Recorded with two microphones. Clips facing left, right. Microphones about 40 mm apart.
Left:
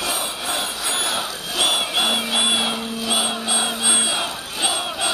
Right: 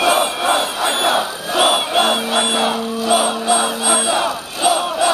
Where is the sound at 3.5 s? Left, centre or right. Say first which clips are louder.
Right 7 dB; right.